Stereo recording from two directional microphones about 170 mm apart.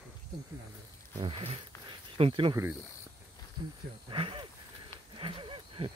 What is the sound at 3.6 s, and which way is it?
Speech, 25° right (ahead or behind).